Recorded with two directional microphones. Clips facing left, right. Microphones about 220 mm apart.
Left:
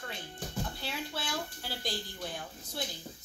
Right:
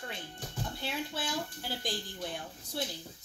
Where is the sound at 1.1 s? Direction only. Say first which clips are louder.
Right 1 dB; 20° right (ahead or behind).